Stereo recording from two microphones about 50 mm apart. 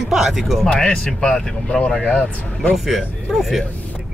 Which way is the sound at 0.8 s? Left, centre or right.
Centre.